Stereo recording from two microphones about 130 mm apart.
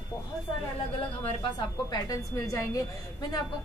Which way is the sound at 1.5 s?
30° left (ahead or behind).